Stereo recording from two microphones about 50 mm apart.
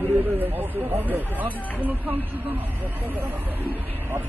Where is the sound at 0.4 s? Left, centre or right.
Right.